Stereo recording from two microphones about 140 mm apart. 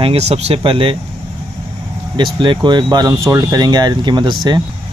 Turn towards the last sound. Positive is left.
turn(degrees=-35)  # may be behind; listen again after turning